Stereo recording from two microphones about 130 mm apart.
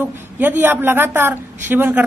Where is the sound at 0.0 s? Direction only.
15° right (ahead or behind).